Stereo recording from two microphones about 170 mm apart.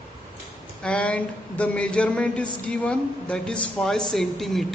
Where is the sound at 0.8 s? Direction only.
5° left (ahead or behind).